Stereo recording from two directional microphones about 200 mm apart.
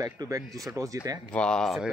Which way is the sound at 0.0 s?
20° right (ahead or behind).